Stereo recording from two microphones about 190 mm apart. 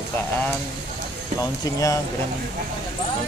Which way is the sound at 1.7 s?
20° left (ahead or behind).